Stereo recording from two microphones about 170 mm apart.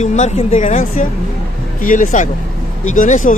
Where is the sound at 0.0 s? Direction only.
45° left (ahead or behind).